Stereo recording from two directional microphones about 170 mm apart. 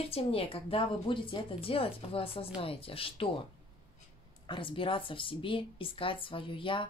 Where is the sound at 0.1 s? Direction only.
35° left (ahead or behind).